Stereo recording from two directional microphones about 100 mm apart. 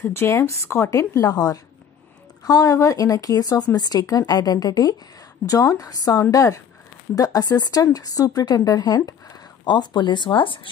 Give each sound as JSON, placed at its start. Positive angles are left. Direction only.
{"t": 0.0, "sound": "a woman's voice", "side_deg": 25}